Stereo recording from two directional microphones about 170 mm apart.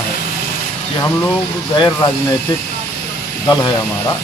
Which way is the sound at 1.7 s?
20° left (ahead or behind).